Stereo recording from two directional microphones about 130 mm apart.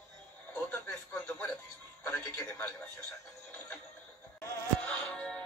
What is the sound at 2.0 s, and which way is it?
Music, 15° left (ahead or behind).